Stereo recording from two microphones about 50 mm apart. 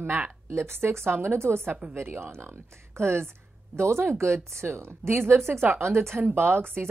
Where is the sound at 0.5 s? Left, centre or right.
Right.